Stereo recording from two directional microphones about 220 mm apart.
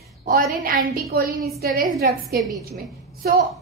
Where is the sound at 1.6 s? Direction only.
40° right (ahead or behind).